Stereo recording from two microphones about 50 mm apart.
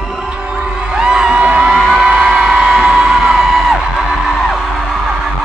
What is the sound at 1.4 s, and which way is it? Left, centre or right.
Vehicle, right.